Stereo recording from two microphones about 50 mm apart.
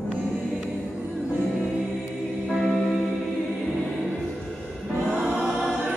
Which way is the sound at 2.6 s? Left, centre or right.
Centre.